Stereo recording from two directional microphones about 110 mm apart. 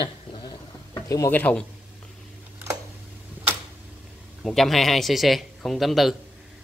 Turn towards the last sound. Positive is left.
turn(degrees=0)  # may be behind; listen again after turning